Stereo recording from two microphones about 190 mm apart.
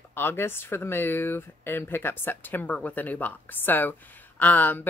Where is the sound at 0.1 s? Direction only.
10° left (ahead or behind).